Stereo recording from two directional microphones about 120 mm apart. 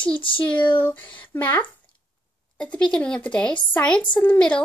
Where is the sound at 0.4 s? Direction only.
10° left (ahead or behind).